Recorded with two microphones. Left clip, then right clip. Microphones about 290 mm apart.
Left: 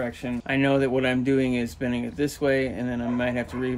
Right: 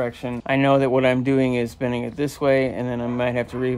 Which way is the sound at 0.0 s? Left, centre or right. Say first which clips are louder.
Right 4 dB; right.